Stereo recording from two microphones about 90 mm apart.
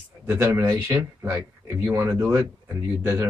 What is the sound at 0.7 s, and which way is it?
Speech, 40° right (ahead or behind).